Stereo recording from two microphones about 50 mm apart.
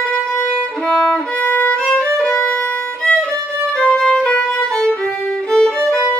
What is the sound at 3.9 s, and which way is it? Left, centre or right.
Violin, centre.